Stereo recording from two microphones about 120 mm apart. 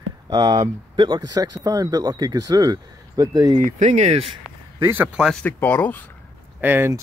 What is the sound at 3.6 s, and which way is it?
Speech, 90° right.